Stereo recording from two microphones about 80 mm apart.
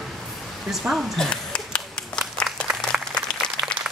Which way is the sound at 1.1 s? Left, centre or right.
Centre.